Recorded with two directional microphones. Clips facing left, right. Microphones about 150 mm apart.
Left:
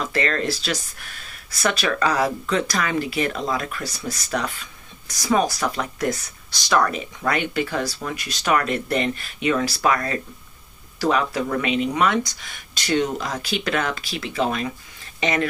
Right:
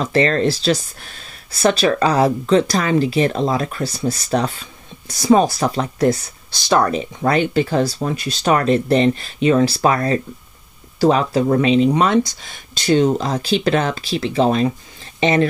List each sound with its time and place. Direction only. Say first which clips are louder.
0.0 s speech: right 7 dB; 30° right (ahead or behind)